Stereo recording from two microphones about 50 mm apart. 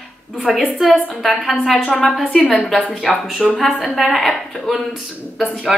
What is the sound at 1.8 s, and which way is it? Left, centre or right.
Speech, left.